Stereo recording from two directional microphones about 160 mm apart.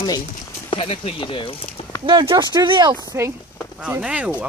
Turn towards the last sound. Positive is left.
turn(degrees=-10)  # may be behind; listen again after turning